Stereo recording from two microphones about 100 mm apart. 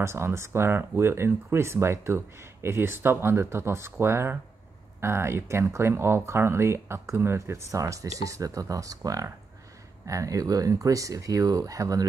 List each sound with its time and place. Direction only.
0.0 s speech: 25° right (ahead or behind)